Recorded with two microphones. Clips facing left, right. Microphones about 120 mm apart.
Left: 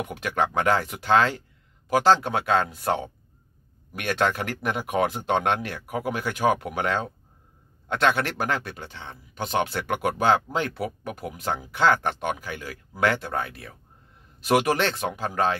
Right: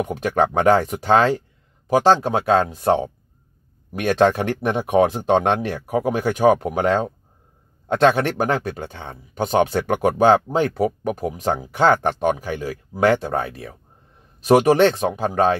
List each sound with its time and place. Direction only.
0.0 s speech: 40° right (ahead or behind)